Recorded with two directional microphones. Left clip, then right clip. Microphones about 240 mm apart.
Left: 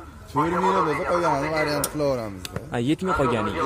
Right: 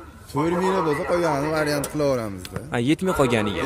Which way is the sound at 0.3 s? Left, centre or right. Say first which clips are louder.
Left 1 dB; right.